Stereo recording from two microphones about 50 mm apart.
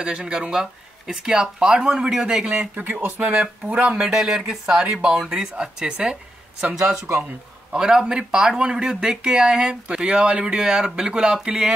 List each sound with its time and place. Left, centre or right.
0.0 s speech: centre
2.4 s speech: right
3.9 s speech: centre